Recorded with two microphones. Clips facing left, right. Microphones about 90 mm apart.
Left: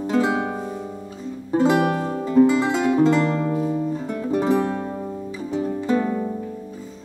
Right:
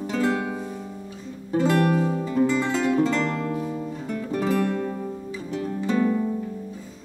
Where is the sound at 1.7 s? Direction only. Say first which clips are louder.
Left 1 dB; 15° left (ahead or behind).